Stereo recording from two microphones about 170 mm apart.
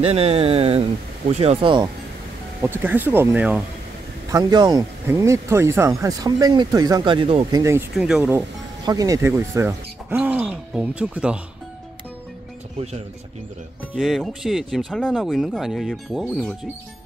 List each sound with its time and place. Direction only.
0.0 s speech: 35° right (ahead or behind)
2.6 s speech: 10° right (ahead or behind)
4.3 s speech: 25° right (ahead or behind)
7.5 s speech: 15° right (ahead or behind)
7.9 s speech: 5° right (ahead or behind)
8.8 s speech: 20° right (ahead or behind)
13.9 s speech: centre (ahead or behind)